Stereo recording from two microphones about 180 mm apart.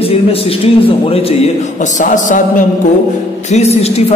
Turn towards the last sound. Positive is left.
turn(degrees=35)  # may be behind; listen again after turning